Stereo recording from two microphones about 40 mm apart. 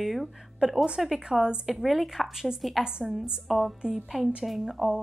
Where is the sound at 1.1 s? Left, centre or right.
Right.